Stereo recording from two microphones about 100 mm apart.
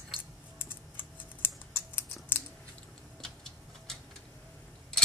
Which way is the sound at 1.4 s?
20° left (ahead or behind).